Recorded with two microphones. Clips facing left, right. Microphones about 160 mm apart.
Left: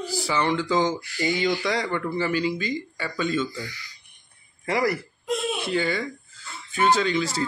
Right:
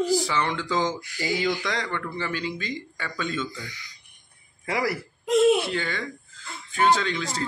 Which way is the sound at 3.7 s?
20° right (ahead or behind).